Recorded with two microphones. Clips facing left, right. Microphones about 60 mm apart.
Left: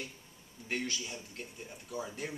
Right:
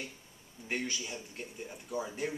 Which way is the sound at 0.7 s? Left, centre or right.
Centre.